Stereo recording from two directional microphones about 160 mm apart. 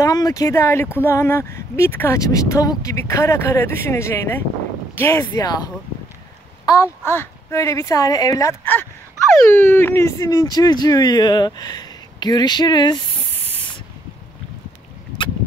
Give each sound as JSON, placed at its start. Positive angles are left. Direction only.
{"t": 0.0, "sound": "speech", "side_deg": 25}